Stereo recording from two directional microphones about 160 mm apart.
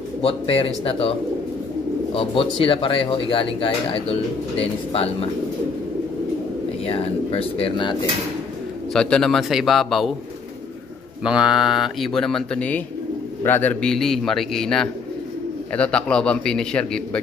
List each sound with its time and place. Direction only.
0.2 s speech: 35° left (ahead or behind)
2.1 s speech: 35° left (ahead or behind)
6.9 s speech: 35° left (ahead or behind)
8.9 s speech: 5° left (ahead or behind)
11.2 s a man's voice: 5° right (ahead or behind)